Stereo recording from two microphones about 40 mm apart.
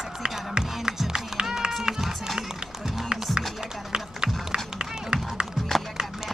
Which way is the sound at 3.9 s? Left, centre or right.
Centre.